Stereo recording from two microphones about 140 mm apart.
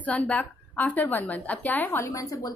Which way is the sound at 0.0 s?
10° left (ahead or behind).